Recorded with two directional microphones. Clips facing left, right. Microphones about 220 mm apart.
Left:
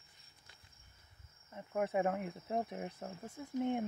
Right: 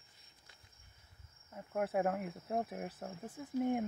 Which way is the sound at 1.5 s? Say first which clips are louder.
Even; centre (ahead or behind).